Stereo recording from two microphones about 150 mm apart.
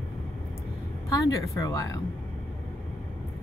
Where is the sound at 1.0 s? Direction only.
20° left (ahead or behind).